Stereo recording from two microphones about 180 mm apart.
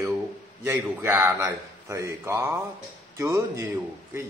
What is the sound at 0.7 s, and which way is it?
A man's voice, 10° right (ahead or behind).